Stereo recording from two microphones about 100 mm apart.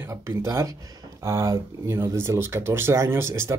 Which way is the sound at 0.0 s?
30° right (ahead or behind).